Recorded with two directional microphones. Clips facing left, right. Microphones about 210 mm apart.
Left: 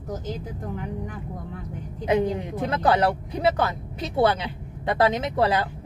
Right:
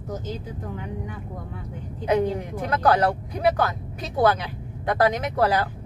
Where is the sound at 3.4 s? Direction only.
25° left (ahead or behind).